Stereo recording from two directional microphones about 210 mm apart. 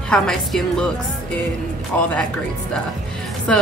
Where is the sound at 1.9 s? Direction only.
5° left (ahead or behind).